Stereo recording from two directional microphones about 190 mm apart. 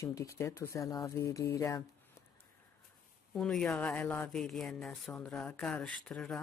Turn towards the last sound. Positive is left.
turn(degrees=5)  # may be behind; listen again after turning